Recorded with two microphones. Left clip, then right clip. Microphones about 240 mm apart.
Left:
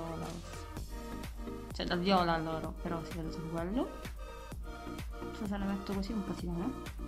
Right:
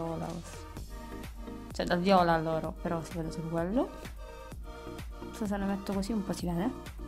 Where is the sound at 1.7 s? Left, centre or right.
Right.